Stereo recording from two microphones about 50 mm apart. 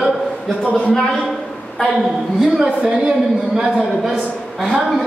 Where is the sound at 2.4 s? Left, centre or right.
Centre.